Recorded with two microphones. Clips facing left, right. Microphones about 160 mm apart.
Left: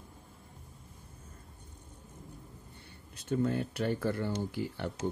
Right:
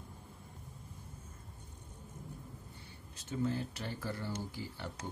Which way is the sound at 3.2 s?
60° left (ahead or behind).